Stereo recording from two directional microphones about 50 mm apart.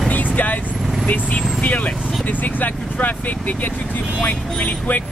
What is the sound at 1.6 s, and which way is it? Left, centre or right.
Speech, left.